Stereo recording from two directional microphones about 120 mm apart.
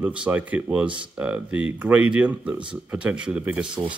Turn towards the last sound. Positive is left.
turn(degrees=-10)  # may be behind; listen again after turning